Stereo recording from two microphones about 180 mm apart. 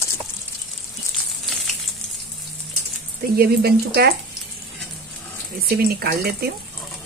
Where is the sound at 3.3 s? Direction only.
60° right (ahead or behind).